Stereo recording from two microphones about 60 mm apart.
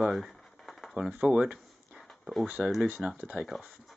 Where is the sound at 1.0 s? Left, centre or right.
Centre.